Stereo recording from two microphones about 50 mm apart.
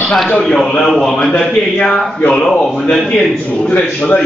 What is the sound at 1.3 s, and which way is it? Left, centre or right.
A man's voice, centre.